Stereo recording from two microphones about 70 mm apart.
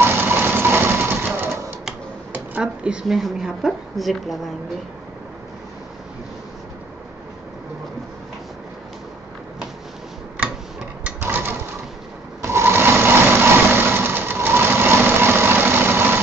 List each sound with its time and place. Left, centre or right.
0.0 s vehicle: right
2.6 s a woman's voice: centre
11.1 s a sound: right
12.4 s sewing machine: right